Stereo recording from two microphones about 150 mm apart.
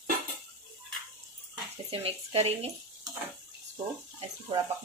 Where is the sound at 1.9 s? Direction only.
40° right (ahead or behind).